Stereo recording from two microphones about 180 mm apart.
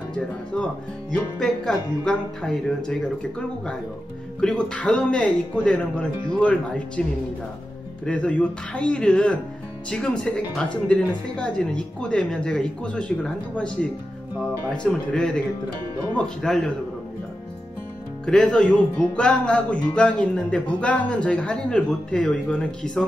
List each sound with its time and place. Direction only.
1.1 s speech: 5° left (ahead or behind)
8.0 s speech: 5° left (ahead or behind)
18.2 s speech: 5° left (ahead or behind)